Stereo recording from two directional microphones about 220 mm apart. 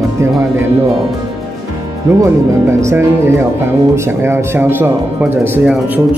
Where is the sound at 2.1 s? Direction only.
15° right (ahead or behind).